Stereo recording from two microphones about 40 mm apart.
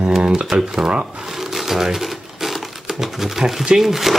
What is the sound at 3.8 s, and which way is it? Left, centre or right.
Speech, centre.